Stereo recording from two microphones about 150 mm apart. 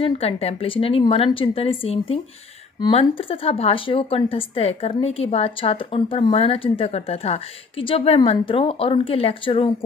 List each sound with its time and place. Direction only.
0.0 s speech: 40° left (ahead or behind)